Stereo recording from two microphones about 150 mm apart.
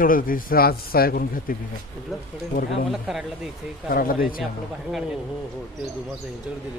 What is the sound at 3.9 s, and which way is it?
Speech, 75° left (ahead or behind).